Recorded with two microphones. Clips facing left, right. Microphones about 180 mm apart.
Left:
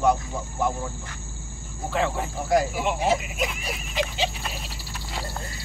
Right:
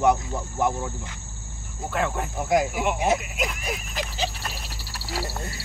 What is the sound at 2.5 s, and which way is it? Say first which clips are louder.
Speech: even; 10° right (ahead or behind).